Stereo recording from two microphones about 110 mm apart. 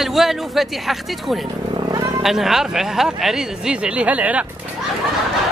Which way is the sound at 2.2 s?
5° right (ahead or behind).